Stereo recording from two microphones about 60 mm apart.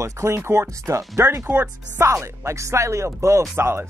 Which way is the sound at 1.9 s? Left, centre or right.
Right.